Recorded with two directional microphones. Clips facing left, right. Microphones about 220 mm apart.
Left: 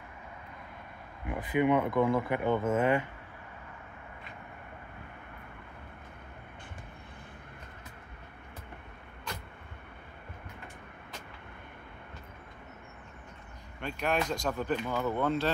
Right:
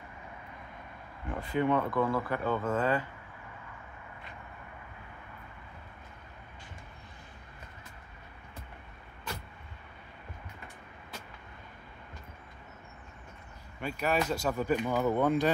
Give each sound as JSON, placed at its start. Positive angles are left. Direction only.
{"t": 1.2, "sound": "speech", "side_deg": 15}
{"t": 13.7, "sound": "speech", "side_deg": -5}